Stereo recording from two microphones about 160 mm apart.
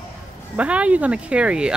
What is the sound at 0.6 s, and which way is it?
Speech, 10° right (ahead or behind).